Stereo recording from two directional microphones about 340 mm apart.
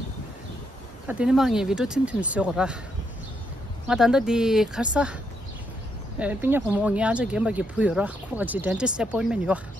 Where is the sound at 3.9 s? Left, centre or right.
Centre.